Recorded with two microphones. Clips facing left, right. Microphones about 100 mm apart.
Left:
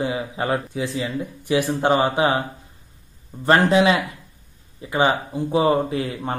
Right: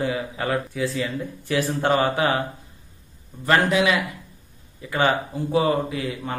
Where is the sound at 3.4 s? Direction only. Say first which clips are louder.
Left 3 dB; 30° left (ahead or behind).